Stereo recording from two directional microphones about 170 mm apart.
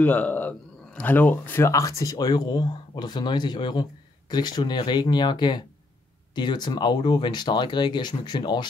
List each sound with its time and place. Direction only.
0.0 s speech: 10° left (ahead or behind); by 8.6 s 25° left (ahead or behind)